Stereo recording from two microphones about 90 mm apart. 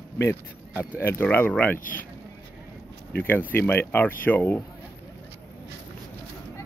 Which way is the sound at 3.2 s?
20° left (ahead or behind).